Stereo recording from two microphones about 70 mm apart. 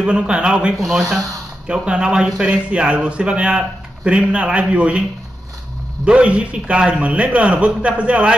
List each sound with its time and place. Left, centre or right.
0.0 s a man's voice: centre
6.0 s a man's voice: centre